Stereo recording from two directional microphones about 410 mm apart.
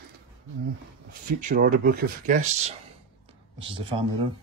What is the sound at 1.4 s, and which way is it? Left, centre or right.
Speech, centre.